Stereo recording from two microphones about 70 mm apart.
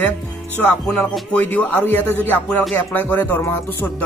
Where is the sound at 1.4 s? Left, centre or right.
Left.